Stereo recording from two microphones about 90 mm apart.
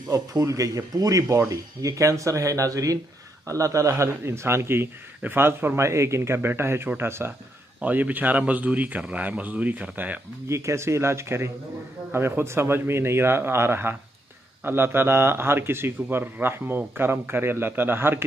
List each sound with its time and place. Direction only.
0.1 s a man's voice: 35° right (ahead or behind); by 10.2 s 15° right (ahead or behind)
10.5 s a man's voice: 30° right (ahead or behind)